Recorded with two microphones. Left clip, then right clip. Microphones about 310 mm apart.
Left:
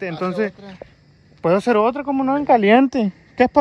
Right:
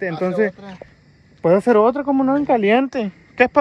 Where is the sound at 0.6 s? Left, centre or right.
Centre.